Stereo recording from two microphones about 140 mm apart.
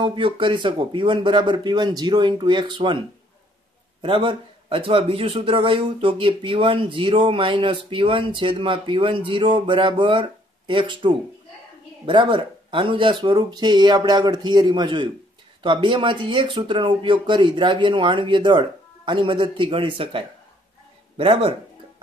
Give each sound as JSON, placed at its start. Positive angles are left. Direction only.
{"t": 0.0, "sound": "speech", "side_deg": -35}
{"t": 4.0, "sound": "speech", "side_deg": -35}